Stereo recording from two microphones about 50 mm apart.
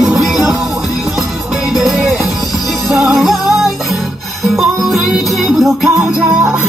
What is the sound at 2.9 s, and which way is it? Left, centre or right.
Music, centre.